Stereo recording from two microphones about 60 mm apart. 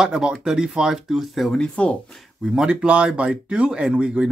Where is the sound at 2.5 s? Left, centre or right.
Centre.